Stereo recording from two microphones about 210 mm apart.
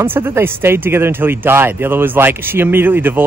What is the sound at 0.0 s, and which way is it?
Speech, 10° right (ahead or behind).